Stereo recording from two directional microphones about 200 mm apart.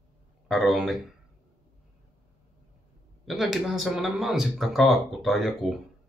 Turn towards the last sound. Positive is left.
turn(degrees=0)  # may be behind; listen again after turning